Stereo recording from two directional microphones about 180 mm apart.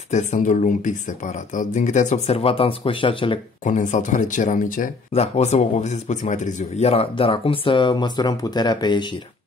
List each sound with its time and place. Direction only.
0.1 s speech: 40° left (ahead or behind)
3.6 s speech: 45° left (ahead or behind); by 9.1 s 25° left (ahead or behind)